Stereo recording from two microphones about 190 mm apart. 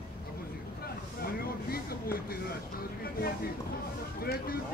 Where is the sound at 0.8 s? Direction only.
50° left (ahead or behind).